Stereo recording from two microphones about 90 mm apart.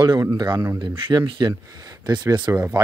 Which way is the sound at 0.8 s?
60° right (ahead or behind).